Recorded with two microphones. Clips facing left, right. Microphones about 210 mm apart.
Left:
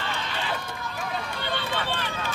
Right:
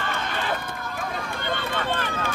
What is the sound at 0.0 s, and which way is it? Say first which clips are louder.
Run: right 3 dB; 50° right (ahead or behind).